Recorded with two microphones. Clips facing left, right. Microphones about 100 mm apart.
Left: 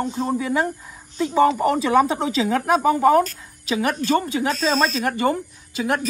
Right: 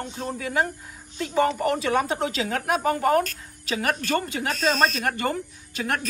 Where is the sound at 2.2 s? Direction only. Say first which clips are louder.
Left 5 dB; 35° left (ahead or behind).